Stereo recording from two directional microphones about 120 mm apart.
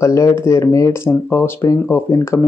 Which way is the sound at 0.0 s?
25° left (ahead or behind).